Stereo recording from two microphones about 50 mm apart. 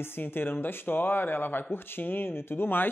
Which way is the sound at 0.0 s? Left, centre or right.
Left.